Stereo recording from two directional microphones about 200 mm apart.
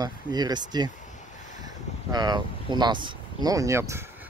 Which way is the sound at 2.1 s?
20° right (ahead or behind).